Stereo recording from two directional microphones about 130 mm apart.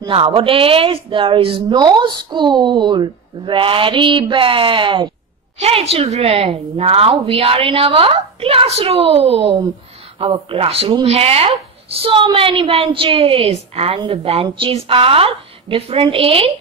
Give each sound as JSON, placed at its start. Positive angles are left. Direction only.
{"t": 0.1, "sound": "speech", "side_deg": -45}
{"t": 5.6, "sound": "a woman's voice", "side_deg": -50}